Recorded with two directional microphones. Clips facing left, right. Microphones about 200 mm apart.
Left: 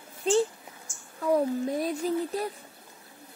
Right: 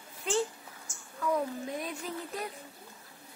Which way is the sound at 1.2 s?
35° left (ahead or behind).